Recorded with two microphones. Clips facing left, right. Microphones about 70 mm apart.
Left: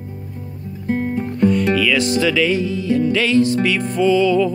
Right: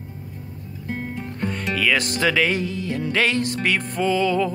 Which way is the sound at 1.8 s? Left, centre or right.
Right.